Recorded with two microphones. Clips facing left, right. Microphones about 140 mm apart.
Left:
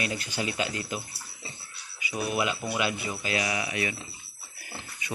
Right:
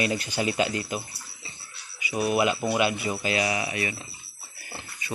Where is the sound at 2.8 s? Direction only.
25° right (ahead or behind).